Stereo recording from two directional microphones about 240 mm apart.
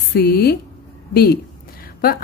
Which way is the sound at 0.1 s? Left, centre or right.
Left.